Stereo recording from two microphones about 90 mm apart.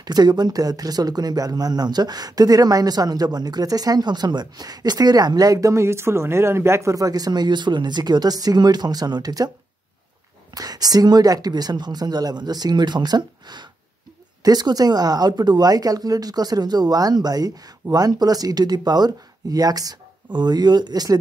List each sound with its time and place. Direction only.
0.0 s speech: 50° right (ahead or behind)
10.5 s speech: 45° right (ahead or behind)